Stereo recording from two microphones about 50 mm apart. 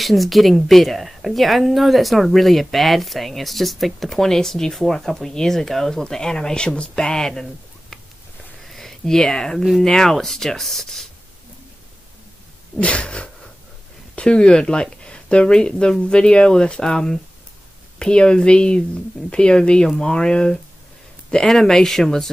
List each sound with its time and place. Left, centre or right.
0.0 s speech: centre
8.6 s speech: centre
12.7 s speech: left